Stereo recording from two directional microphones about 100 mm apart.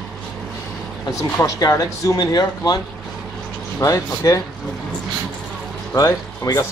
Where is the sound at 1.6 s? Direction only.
35° left (ahead or behind).